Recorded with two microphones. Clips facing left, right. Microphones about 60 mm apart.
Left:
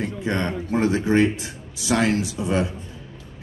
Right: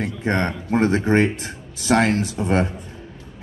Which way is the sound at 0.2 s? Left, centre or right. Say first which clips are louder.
Right 3 dB; right.